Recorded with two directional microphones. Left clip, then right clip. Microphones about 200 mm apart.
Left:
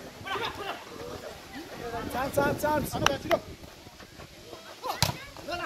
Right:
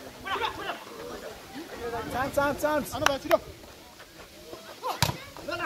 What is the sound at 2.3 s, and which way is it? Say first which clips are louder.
Speech: even; 35° left (ahead or behind).